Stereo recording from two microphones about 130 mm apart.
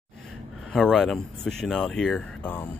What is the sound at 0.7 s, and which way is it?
Speech, 5° left (ahead or behind).